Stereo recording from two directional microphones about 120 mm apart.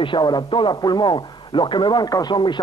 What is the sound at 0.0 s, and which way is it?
A man's voice, 40° left (ahead or behind).